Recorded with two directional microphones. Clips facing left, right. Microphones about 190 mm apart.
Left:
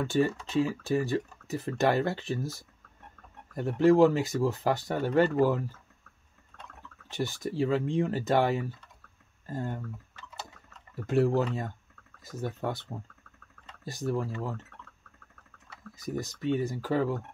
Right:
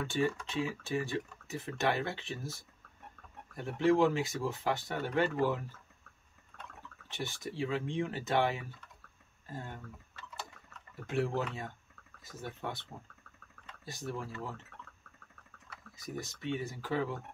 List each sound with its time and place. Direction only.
0.0 s speech: 40° left (ahead or behind)
3.5 s speech: 40° left (ahead or behind)
7.1 s speech: 40° left (ahead or behind)
11.1 s speech: 40° left (ahead or behind)
13.8 s speech: 40° left (ahead or behind)
16.2 s speech: 40° left (ahead or behind)